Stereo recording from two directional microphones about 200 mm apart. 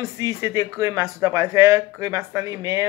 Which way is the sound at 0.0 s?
15° right (ahead or behind).